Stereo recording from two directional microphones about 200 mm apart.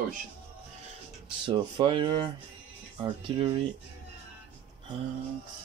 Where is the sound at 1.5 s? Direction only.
25° right (ahead or behind).